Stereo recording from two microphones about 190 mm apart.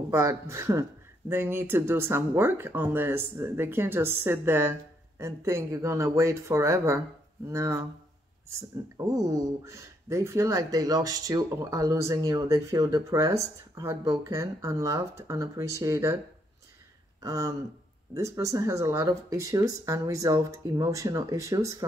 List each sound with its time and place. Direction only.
0.1 s speech: 15° right (ahead or behind)
17.2 s a sound: 15° right (ahead or behind)
18.1 s speech: 15° right (ahead or behind)